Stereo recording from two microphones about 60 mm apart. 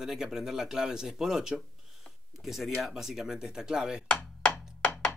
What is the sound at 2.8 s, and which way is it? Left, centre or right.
Speech, centre.